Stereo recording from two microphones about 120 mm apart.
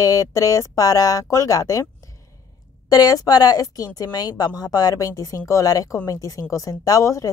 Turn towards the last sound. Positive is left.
turn(degrees=30)  # may be behind; listen again after turning